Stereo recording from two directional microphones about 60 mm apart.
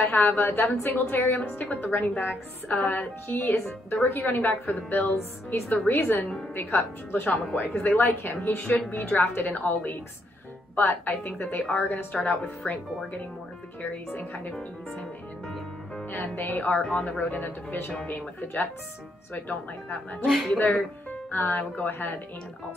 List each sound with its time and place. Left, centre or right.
0.0 s a woman's voice: left
16.1 s a woman's voice: left
20.2 s speech: centre
20.5 s a woman's voice: left